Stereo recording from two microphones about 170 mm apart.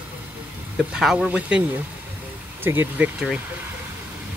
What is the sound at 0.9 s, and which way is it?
Speech, 5° right (ahead or behind).